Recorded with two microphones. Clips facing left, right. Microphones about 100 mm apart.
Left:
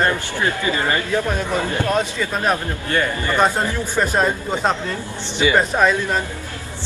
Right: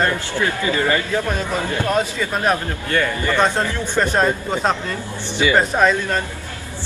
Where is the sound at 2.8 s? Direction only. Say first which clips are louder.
Right 1 dB; 25° left (ahead or behind).